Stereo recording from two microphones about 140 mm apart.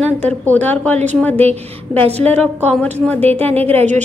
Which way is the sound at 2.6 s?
10° left (ahead or behind).